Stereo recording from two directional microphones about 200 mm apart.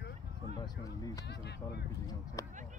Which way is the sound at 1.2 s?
55° left (ahead or behind).